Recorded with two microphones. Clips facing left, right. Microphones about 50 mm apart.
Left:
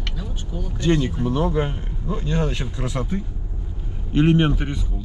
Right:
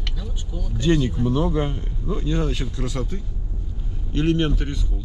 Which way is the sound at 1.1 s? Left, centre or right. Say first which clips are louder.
Even; left.